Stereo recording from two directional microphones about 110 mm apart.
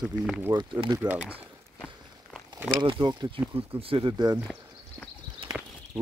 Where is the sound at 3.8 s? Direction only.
55° right (ahead or behind).